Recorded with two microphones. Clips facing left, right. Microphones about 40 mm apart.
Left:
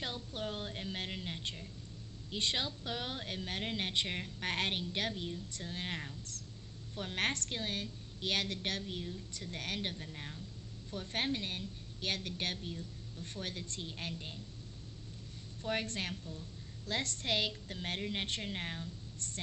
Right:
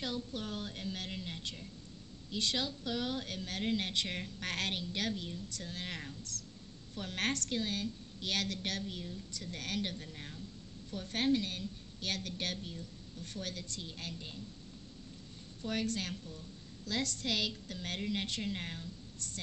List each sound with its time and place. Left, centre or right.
0.0 s a woman's voice: left
15.6 s a woman's voice: left
18.4 s a woman's voice: left
19.1 s a sound: left